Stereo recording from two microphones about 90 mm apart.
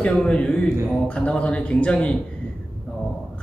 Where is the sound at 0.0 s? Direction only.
10° left (ahead or behind).